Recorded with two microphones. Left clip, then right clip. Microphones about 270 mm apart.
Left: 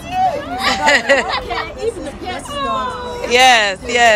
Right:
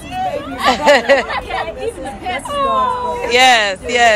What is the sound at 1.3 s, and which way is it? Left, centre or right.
A woman's voice, right.